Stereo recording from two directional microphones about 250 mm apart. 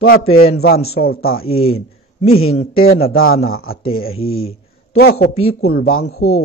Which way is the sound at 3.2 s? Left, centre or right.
Left.